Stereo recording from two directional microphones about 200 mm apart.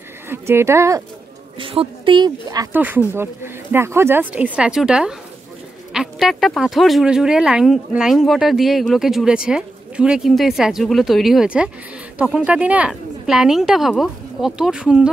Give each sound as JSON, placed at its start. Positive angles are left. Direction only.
{"t": 0.3, "sound": "speech", "side_deg": -10}
{"t": 1.6, "sound": "speech", "side_deg": -25}